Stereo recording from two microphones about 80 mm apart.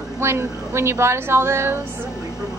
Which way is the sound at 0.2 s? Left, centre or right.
Right.